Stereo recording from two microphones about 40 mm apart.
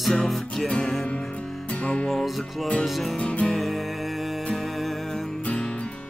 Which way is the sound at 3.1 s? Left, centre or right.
Left.